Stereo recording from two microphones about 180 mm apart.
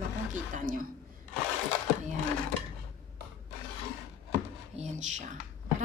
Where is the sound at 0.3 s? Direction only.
50° right (ahead or behind).